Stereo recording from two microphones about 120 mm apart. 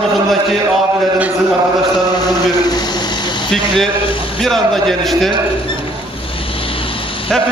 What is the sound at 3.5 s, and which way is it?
A man's voice, 5° left (ahead or behind).